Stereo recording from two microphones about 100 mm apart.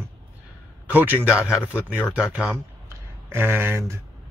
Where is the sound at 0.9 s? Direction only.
20° right (ahead or behind).